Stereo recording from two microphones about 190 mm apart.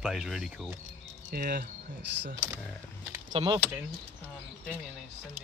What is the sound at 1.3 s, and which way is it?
Speech, 50° right (ahead or behind).